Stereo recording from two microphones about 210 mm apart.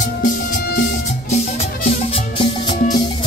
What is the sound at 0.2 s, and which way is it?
Music, 45° left (ahead or behind).